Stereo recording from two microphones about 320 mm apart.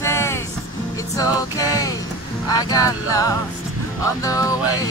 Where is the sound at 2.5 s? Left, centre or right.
Centre.